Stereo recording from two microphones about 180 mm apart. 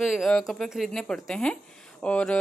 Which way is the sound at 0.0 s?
Centre (ahead or behind).